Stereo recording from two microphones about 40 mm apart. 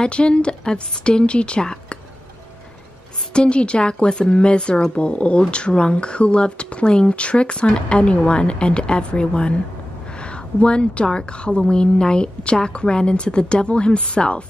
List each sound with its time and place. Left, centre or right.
0.0 s speech: left
3.3 s speech: left
10.0 s a sound: left
11.1 s speech: left